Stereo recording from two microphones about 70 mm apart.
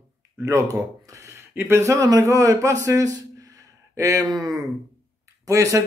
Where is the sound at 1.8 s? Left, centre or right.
Right.